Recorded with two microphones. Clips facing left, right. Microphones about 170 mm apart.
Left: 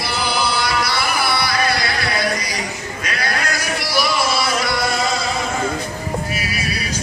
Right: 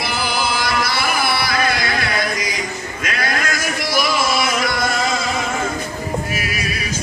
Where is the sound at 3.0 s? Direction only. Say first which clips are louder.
Right 1 dB; 50° right (ahead or behind).